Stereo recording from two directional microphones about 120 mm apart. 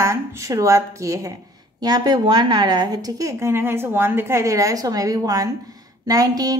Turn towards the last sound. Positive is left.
turn(degrees=-30)  # may be behind; listen again after turning